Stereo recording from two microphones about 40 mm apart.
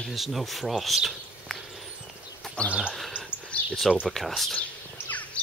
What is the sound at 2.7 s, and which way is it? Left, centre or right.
Speech, right.